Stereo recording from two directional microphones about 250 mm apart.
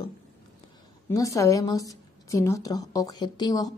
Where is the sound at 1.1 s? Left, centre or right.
Centre.